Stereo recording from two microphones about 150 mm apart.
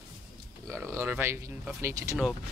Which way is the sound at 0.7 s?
15° right (ahead or behind).